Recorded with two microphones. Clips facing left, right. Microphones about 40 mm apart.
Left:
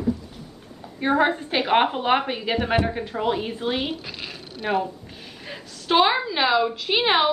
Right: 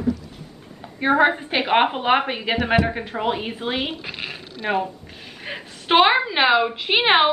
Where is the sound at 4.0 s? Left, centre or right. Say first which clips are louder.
Right 4 dB; right.